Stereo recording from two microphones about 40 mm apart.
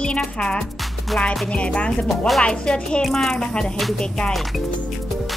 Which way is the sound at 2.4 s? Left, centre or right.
Left.